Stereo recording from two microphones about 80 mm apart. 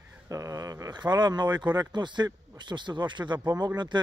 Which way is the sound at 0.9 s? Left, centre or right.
Right.